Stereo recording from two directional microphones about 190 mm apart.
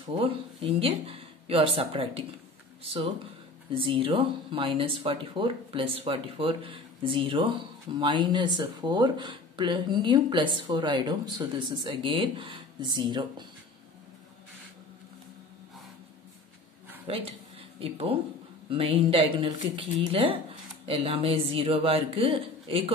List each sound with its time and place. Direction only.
0.0 s speech: 30° right (ahead or behind)
17.1 s speech: 30° right (ahead or behind)